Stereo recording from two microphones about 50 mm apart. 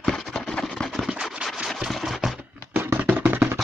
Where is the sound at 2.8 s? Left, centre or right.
Right.